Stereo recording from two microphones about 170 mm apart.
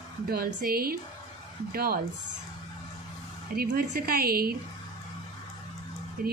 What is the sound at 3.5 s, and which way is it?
A woman's voice, 60° right (ahead or behind).